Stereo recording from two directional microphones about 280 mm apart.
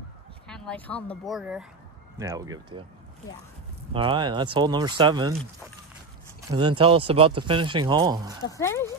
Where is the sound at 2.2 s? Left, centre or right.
Centre.